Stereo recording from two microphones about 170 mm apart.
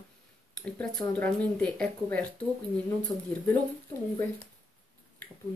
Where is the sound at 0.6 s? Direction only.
5° left (ahead or behind).